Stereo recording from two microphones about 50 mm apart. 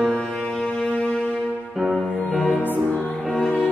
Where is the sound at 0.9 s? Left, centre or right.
Left.